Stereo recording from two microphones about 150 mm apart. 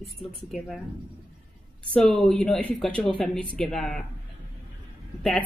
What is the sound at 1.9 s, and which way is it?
Speech, 5° left (ahead or behind).